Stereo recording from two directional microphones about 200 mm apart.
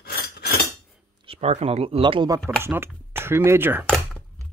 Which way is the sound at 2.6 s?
10° right (ahead or behind).